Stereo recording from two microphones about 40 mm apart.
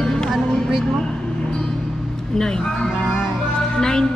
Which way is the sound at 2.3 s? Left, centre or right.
Centre.